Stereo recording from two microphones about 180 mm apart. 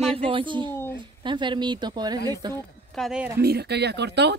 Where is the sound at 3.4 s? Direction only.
65° right (ahead or behind).